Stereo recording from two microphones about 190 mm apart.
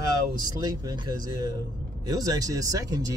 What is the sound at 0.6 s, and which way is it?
Speech, 20° right (ahead or behind).